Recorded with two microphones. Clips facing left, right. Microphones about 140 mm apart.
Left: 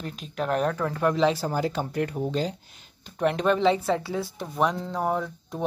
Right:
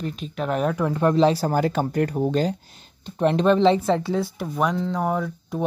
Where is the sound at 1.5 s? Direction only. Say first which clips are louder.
Right 5 dB; 55° right (ahead or behind).